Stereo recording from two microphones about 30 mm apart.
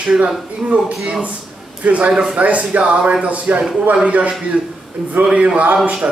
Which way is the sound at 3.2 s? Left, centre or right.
Right.